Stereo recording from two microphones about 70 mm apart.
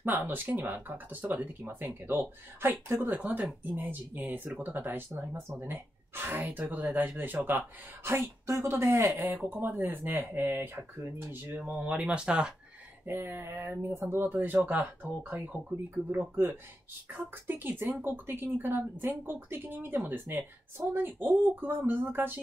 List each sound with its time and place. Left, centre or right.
0.3 s speech: right
13.0 s speech: right